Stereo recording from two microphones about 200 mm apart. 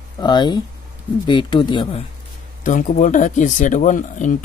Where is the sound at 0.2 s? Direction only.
20° left (ahead or behind).